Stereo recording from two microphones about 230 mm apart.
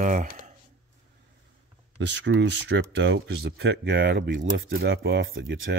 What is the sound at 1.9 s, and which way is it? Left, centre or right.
Speech, right.